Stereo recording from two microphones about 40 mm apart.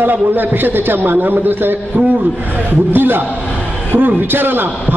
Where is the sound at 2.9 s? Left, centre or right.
Right.